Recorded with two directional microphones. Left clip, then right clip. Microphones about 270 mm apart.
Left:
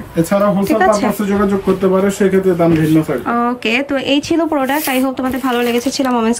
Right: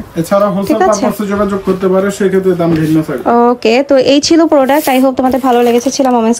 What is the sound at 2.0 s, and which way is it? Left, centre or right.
Speech, centre.